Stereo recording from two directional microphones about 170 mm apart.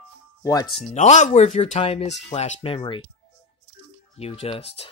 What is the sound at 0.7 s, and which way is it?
Speech, 45° left (ahead or behind).